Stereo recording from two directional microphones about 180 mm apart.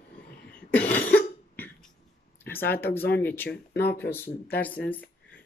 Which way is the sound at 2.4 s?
10° left (ahead or behind).